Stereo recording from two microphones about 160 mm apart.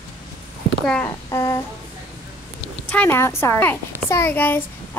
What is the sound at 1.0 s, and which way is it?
Child singing, 20° left (ahead or behind).